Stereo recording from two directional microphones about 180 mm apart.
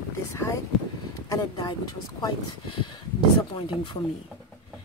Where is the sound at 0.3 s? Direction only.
15° left (ahead or behind).